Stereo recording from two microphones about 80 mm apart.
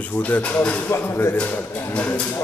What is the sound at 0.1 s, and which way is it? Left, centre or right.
Speech, centre.